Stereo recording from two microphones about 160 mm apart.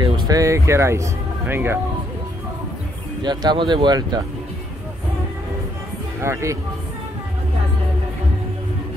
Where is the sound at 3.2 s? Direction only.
25° right (ahead or behind).